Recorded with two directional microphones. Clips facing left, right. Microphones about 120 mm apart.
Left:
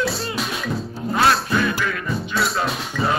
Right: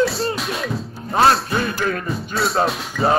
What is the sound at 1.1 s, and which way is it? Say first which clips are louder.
Music: right 2 dB; 30° right (ahead or behind).